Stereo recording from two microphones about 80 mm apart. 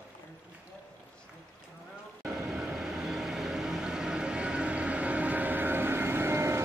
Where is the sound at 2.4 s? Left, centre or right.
Centre; by 6.6 s right.